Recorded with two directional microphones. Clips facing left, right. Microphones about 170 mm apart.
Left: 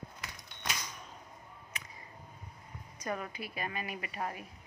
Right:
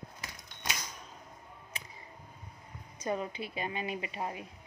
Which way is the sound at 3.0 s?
25° right (ahead or behind).